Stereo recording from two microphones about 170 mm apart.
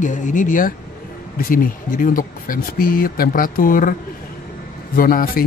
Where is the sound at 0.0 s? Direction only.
45° left (ahead or behind).